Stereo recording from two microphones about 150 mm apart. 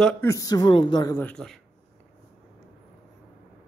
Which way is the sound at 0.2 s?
20° left (ahead or behind).